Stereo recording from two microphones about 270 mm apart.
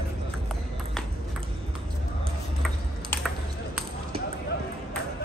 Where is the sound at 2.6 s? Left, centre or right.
Centre.